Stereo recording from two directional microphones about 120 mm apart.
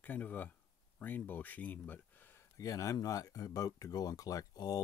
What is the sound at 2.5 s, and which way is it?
Speech, 25° left (ahead or behind).